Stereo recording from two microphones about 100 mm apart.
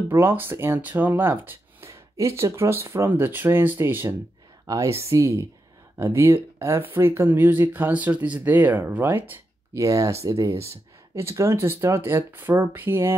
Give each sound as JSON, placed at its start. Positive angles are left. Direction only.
{"t": 0.1, "sound": "speech", "side_deg": -25}
{"t": 1.9, "sound": "speech", "side_deg": -30}
{"t": 4.6, "sound": "a woman's voice", "side_deg": -30}
{"t": 9.8, "sound": "speech", "side_deg": -30}